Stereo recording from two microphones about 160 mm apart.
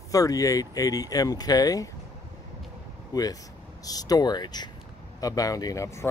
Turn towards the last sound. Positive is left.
turn(degrees=20)  # may be behind; listen again after turning